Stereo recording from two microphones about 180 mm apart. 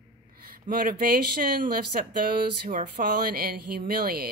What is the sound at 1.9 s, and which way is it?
A woman's voice, 50° right (ahead or behind).